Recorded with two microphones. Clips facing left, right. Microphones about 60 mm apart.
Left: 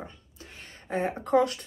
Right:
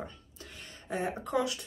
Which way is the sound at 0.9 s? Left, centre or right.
Left.